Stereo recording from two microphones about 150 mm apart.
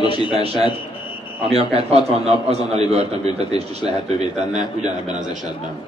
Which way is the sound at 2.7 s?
45° right (ahead or behind).